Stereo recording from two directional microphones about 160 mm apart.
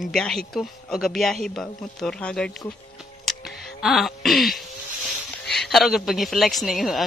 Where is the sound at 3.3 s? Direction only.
Centre (ahead or behind).